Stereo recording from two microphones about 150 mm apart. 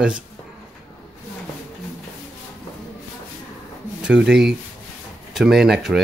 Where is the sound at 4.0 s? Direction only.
5° right (ahead or behind).